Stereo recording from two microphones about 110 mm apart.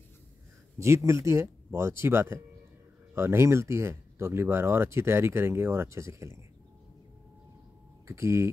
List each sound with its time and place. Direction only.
0.7 s speech: 25° right (ahead or behind)
8.1 s speech: 25° right (ahead or behind)